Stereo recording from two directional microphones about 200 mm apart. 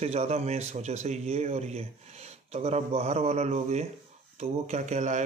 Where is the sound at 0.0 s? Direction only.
35° right (ahead or behind).